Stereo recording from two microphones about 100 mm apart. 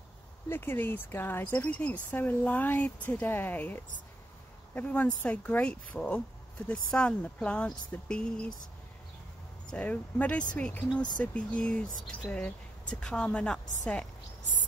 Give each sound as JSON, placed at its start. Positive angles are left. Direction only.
{"t": 0.5, "sound": "speech", "side_deg": 20}
{"t": 9.7, "sound": "speech", "side_deg": 15}